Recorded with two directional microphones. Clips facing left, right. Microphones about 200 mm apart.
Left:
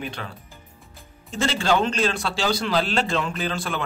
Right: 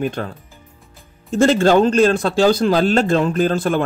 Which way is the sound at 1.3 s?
50° right (ahead or behind).